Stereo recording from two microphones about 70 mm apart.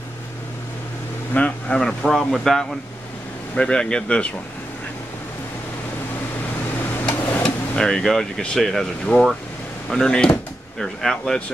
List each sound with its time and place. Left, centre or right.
1.3 s vehicle: left
1.8 s speech: centre
7.2 s a sound: left
7.4 s speech: centre